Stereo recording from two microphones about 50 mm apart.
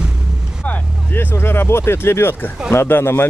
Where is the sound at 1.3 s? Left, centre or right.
Left.